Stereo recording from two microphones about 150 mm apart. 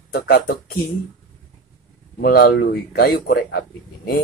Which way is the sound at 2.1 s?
80° left.